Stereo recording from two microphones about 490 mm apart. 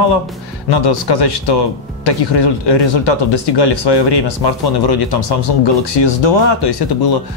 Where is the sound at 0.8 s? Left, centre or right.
Left.